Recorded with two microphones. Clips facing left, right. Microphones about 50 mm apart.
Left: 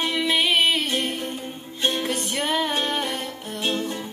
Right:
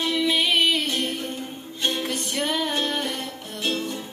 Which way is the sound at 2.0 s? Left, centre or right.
Centre.